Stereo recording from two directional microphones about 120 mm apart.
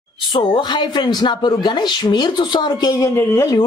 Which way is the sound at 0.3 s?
40° left (ahead or behind).